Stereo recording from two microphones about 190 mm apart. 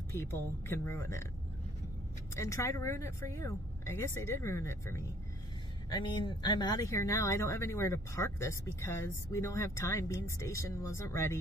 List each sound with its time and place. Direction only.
0.1 s speech: 15° left (ahead or behind)
2.3 s speech: 15° left (ahead or behind)